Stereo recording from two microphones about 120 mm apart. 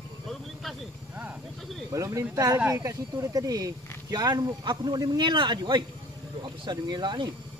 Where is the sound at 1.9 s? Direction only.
25° right (ahead or behind).